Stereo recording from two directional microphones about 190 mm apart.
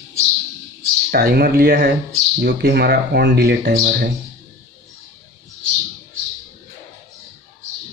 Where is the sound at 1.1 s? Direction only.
55° right (ahead or behind).